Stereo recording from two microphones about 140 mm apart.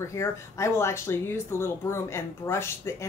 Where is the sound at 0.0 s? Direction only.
20° left (ahead or behind).